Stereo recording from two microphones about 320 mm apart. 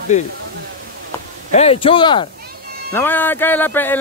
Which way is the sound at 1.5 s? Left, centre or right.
Centre.